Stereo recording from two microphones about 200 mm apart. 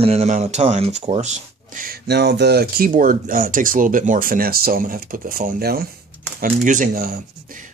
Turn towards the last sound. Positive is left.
turn(degrees=-40)  # may be behind; listen again after turning